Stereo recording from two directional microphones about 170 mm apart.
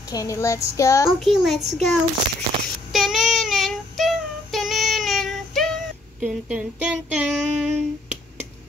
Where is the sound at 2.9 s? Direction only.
Centre (ahead or behind).